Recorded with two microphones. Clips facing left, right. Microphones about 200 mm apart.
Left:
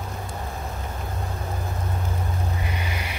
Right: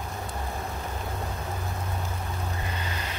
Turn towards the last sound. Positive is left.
turn(degrees=10)  # may be behind; listen again after turning